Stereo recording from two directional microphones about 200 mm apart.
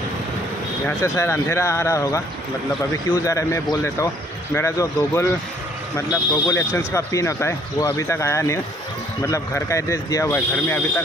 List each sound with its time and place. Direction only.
0.8 s speech: 15° left (ahead or behind)